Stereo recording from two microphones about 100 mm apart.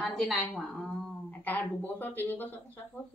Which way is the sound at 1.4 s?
20° left (ahead or behind).